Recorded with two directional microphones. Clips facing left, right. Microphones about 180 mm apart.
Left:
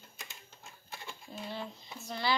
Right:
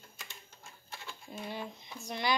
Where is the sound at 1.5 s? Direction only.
15° right (ahead or behind).